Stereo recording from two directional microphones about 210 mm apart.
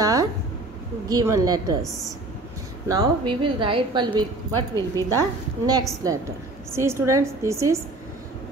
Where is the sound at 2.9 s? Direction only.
20° right (ahead or behind).